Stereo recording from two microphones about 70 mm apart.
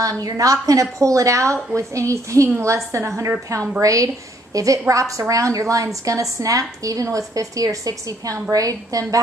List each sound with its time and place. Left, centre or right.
0.0 s a woman's voice: right